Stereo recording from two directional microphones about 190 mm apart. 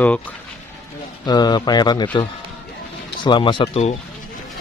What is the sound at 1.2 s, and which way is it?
Speech, 20° left (ahead or behind).